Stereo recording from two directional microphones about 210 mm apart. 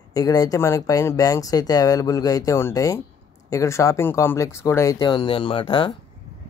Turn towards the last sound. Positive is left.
turn(degrees=25)  # may be behind; listen again after turning